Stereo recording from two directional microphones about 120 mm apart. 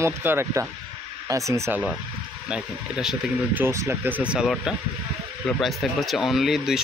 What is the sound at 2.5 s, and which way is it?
Speech, 5° right (ahead or behind).